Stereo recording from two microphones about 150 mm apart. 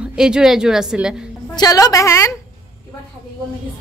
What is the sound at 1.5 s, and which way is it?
Speech, 25° left (ahead or behind).